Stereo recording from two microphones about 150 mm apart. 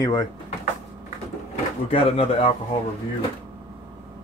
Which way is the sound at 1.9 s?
45° left (ahead or behind).